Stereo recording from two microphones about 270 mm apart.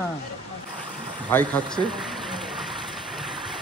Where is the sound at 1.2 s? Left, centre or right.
Centre.